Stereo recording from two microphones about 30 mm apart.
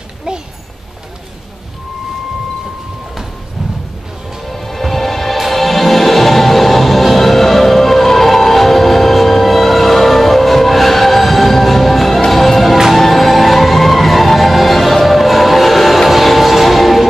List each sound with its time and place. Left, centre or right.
4.5 s music: centre